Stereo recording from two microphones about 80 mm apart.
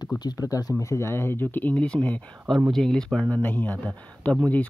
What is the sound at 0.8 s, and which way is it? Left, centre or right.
Speech, left.